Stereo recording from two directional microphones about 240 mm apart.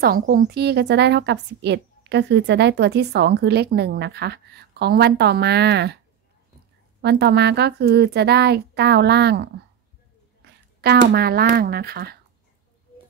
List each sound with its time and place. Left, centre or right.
0.0 s a woman's voice: right
7.0 s a woman's voice: right